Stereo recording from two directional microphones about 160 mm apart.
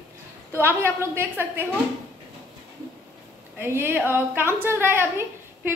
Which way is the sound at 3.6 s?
15° right (ahead or behind).